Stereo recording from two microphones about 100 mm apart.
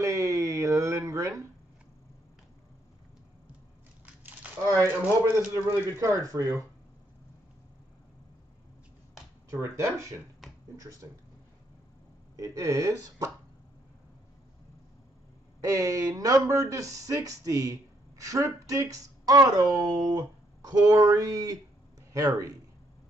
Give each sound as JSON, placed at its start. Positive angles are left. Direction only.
{"t": 0.0, "sound": "a sound", "side_deg": -30}
{"t": 4.0, "sound": "a sound", "side_deg": -15}
{"t": 5.2, "sound": "a man's voice", "side_deg": -25}
{"t": 5.9, "sound": "speech", "side_deg": -35}
{"t": 9.5, "sound": "speech", "side_deg": -30}
{"t": 12.4, "sound": "speech", "side_deg": -30}
{"t": 15.6, "sound": "speech", "side_deg": -35}